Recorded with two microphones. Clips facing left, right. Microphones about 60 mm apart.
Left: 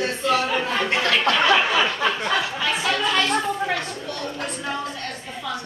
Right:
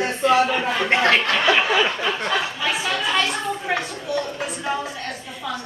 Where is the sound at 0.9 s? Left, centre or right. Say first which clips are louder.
Right 5 dB; right.